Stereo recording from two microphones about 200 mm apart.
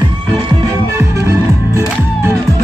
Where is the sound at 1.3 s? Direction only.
15° right (ahead or behind).